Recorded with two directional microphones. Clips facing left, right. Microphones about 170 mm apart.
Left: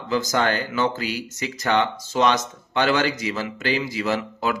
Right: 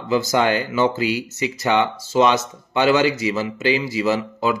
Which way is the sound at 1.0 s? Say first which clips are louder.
Right 6 dB; 45° left (ahead or behind).